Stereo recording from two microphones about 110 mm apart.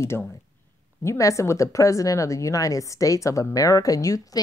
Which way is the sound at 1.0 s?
30° left (ahead or behind).